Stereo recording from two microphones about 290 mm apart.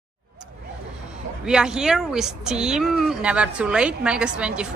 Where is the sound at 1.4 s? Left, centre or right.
Centre.